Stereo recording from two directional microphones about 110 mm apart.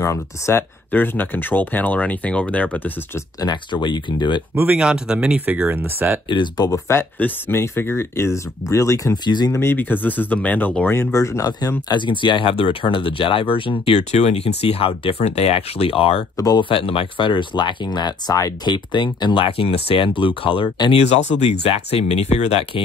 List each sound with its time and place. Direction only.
0.0 s speech: 25° left (ahead or behind)
3.3 s speech: 40° left (ahead or behind)
4.7 s speech: 5° right (ahead or behind)
6.2 s speech: 45° left (ahead or behind)
6.9 s speech: 20° left (ahead or behind)
9.1 s speech: 40° left (ahead or behind)
9.5 s speech: 25° left (ahead or behind)
11.0 s speech: 25° left (ahead or behind)
11.9 s speech: 45° left (ahead or behind)
14.1 s speech: 75° left (ahead or behind); by 16.3 s 60° left (ahead or behind)
16.3 s speech: 35° left (ahead or behind)
16.6 s speech: 55° left (ahead or behind)
21.0 s speech: 80° left